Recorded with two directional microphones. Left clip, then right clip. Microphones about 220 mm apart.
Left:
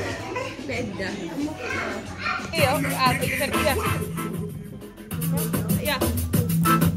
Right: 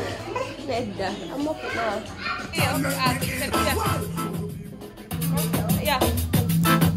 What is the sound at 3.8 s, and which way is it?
Music, 45° right (ahead or behind).